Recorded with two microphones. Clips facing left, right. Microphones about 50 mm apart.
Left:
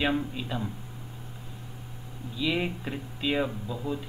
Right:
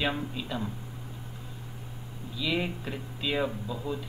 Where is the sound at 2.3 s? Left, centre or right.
Centre.